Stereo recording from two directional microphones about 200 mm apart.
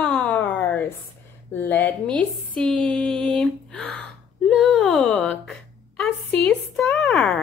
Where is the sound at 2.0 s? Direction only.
5° left (ahead or behind).